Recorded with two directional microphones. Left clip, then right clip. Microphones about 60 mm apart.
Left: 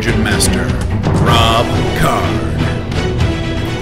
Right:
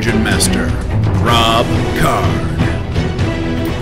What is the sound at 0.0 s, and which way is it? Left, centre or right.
Speech, centre.